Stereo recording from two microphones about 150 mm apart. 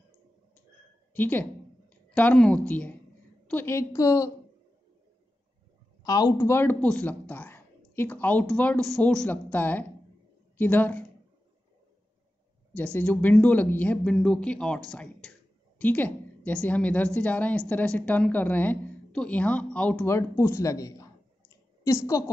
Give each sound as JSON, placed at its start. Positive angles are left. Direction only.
{"t": 1.1, "sound": "a woman's voice", "side_deg": 10}
{"t": 6.0, "sound": "speech", "side_deg": 25}
{"t": 12.7, "sound": "a woman's voice", "side_deg": 10}